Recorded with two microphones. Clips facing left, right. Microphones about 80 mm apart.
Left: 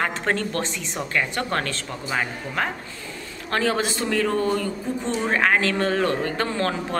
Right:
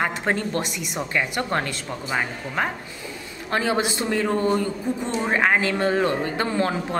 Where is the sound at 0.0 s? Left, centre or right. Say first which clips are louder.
Even; centre.